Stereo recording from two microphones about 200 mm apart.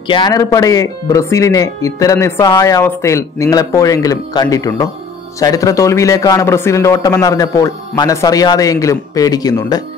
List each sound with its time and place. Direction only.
0.1 s speech: 20° left (ahead or behind)